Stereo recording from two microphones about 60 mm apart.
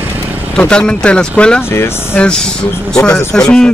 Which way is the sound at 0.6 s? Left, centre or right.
Centre.